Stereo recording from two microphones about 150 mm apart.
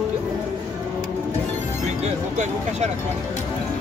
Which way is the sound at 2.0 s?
50° right (ahead or behind).